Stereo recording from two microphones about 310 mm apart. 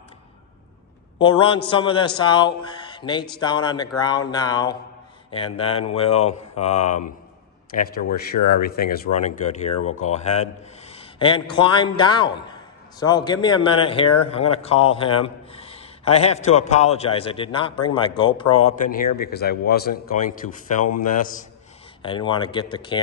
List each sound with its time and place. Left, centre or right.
1.2 s a man's voice: centre
22.0 s a man's voice: centre